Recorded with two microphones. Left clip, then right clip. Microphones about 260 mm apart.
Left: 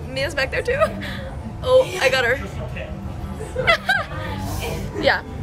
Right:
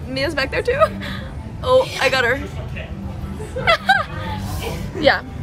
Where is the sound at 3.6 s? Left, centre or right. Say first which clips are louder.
Right 3 dB; centre.